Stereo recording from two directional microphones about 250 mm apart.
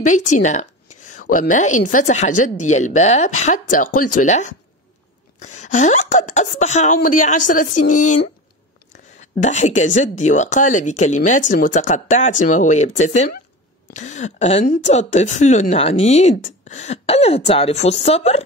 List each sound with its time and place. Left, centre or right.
0.0 s speech: left